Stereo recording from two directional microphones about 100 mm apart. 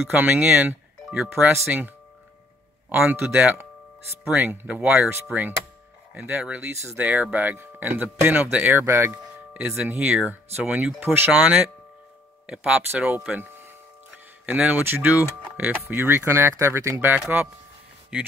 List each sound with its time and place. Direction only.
0.1 s speech: 15° right (ahead or behind)
2.9 s speech: 10° right (ahead or behind)
5.1 s speech: 20° right (ahead or behind)
9.6 s speech: 15° right (ahead or behind)
11.3 s speech: 10° right (ahead or behind); by 17.2 s 25° right (ahead or behind)